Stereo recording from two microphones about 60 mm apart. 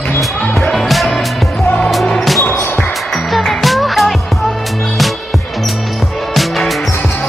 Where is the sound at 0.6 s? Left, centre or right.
Centre.